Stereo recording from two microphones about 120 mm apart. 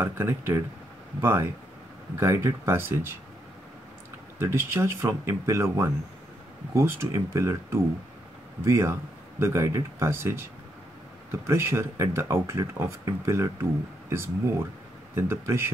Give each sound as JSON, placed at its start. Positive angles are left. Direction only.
{"t": 0.0, "sound": "speech", "side_deg": -20}
{"t": 4.4, "sound": "speech", "side_deg": -20}
{"t": 11.4, "sound": "speech", "side_deg": -20}